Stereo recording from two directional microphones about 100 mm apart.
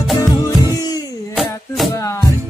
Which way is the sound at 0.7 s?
40° left (ahead or behind).